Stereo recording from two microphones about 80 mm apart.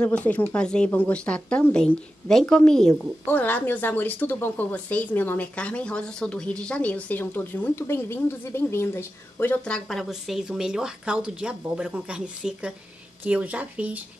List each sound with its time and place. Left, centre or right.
0.0 s a woman's voice: centre
3.3 s speech: left
9.7 s speech: centre